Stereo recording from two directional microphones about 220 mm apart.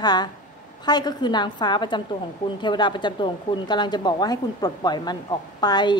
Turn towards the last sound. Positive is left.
turn(degrees=20)  # may be behind; listen again after turning